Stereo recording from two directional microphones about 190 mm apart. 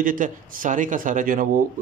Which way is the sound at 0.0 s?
45° right (ahead or behind).